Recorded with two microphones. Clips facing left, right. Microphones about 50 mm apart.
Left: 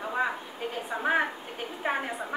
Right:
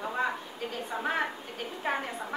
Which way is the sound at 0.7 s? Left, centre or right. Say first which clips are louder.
Left 4 dB; centre.